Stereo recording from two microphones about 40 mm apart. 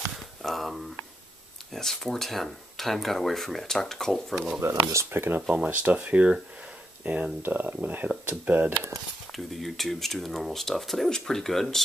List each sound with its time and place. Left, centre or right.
0.4 s speech: centre
4.6 s speech: right
5.7 s speech: right
7.4 s speech: right
9.3 s speech: centre
11.1 s speech: centre